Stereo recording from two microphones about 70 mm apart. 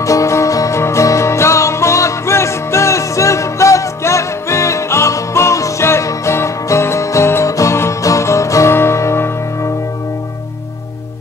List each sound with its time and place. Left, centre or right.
0.0 s music: left